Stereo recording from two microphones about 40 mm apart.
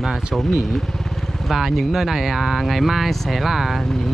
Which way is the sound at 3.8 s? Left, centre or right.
Centre.